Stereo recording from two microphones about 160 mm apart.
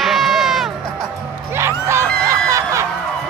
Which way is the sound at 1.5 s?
15° right (ahead or behind).